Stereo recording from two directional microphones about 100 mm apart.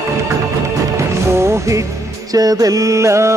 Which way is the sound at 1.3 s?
30° right (ahead or behind).